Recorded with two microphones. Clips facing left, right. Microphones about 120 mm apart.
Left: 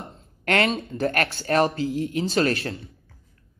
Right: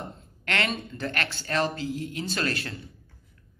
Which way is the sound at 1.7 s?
35° right (ahead or behind).